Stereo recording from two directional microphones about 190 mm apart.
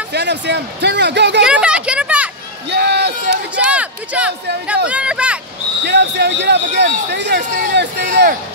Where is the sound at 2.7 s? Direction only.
60° right (ahead or behind).